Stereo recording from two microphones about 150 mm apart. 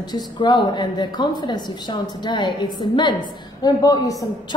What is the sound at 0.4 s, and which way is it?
Speech, 30° left (ahead or behind).